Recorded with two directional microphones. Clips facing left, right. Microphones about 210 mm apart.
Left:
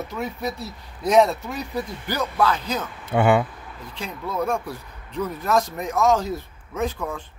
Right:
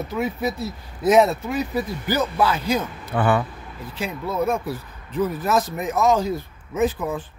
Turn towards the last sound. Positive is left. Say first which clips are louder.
# right 5 dB
turn(degrees=-5)  # may be behind; listen again after turning